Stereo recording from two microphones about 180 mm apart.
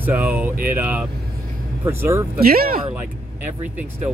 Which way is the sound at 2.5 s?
55° right (ahead or behind).